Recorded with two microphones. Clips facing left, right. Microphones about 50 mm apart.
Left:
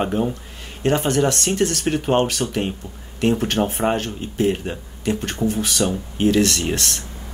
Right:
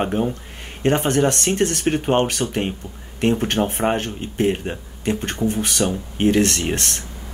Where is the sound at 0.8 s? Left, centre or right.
Right.